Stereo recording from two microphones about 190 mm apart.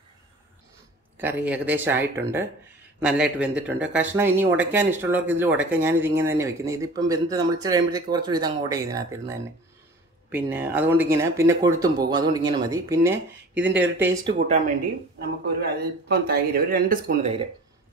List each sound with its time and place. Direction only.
1.1 s speech: 10° right (ahead or behind)
13.8 s speech: 65° right (ahead or behind)
15.1 s speech: 55° right (ahead or behind); by 17.4 s 40° right (ahead or behind)